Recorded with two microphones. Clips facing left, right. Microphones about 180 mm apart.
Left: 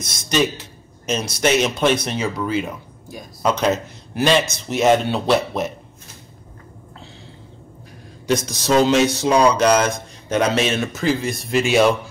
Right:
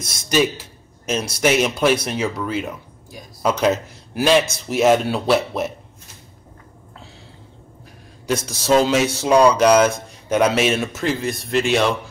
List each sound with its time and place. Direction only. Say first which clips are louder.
0.0 s speech: right 1 dB; 10° right (ahead or behind)
8.3 s speech: right 1 dB; 5° right (ahead or behind)